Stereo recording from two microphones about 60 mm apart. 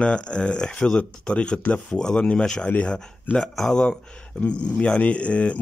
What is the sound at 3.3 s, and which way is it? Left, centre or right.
Speech, centre.